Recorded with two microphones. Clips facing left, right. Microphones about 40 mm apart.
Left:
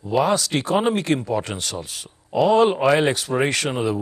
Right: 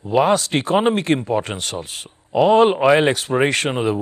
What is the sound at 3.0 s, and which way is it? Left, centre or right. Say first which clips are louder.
Speech: right 3 dB; right.